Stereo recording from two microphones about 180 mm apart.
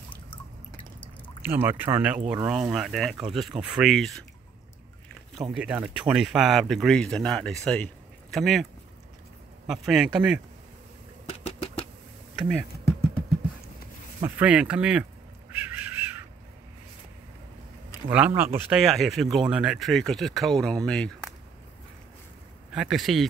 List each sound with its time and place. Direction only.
0.3 s drip: 30° left (ahead or behind)
1.4 s speech: 10° right (ahead or behind)
5.3 s speech: centre (ahead or behind)
9.7 s speech: centre (ahead or behind)
11.2 s a sound: 35° left (ahead or behind)
14.2 s speech: 10° right (ahead or behind)
15.5 s crow: 10° right (ahead or behind)
18.1 s speech: 10° right (ahead or behind)
22.7 s speech: 5° right (ahead or behind)